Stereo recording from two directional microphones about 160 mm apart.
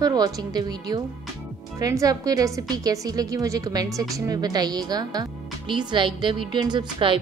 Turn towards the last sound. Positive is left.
turn(degrees=-30)  # may be behind; listen again after turning